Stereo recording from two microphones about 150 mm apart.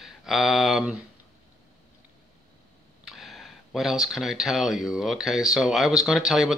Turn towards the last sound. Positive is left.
turn(degrees=-5)  # may be behind; listen again after turning